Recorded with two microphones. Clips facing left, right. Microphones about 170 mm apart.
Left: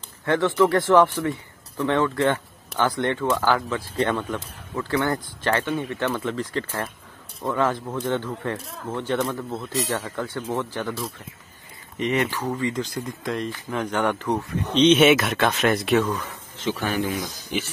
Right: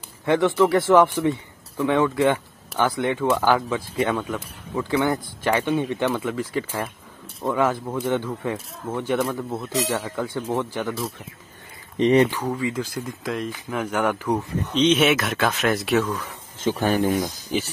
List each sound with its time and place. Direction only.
0.2 s speech: 10° right (ahead or behind)
6.0 s speech: 5° right (ahead or behind)
12.0 s speech: 35° right (ahead or behind)
12.3 s speech: 10° right (ahead or behind)
16.5 s speech: 45° right (ahead or behind)